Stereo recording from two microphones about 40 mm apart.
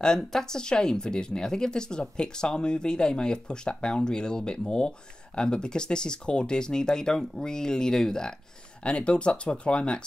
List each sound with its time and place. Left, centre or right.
0.0 s speech: centre
8.8 s speech: left